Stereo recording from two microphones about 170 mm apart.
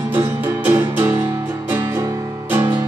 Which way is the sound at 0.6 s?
10° right (ahead or behind).